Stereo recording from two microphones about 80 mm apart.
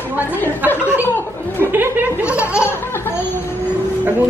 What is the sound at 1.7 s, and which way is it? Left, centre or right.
Laughter, right.